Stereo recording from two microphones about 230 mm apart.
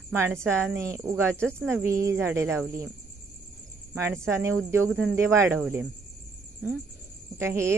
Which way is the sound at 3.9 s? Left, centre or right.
Centre.